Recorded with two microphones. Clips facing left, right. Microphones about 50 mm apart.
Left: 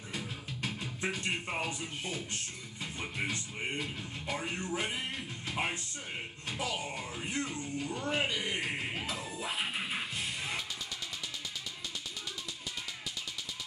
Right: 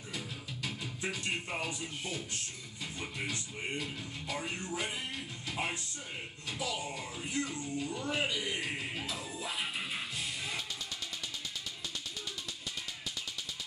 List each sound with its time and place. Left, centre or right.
0.6 s music: left
1.6 s speech: left
10.1 s music: left